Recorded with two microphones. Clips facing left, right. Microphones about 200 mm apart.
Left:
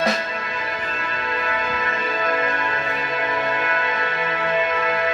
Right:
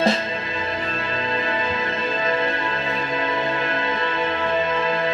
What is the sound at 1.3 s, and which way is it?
Music, 25° right (ahead or behind).